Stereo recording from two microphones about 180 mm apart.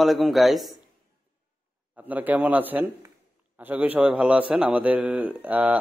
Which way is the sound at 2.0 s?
10° right (ahead or behind).